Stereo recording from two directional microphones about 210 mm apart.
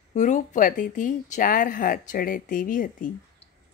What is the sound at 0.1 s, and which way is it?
Speech, 35° left (ahead or behind).